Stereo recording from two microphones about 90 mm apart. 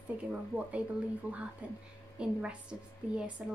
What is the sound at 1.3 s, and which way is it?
A woman's voice, 15° right (ahead or behind).